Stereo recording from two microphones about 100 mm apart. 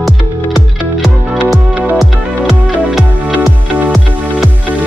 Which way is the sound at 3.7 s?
15° right (ahead or behind).